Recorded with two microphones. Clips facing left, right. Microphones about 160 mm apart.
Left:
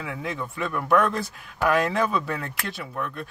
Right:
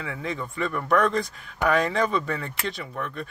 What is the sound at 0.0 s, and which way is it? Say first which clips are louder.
A man's voice: even; 5° left (ahead or behind).